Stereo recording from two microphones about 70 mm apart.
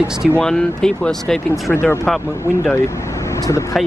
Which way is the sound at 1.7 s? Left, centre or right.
Left.